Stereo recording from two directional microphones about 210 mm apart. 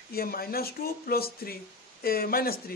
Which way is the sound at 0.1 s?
45° left (ahead or behind).